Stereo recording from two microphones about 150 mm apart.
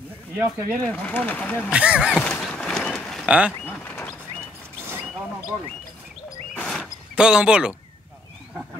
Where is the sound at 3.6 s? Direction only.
10° left (ahead or behind).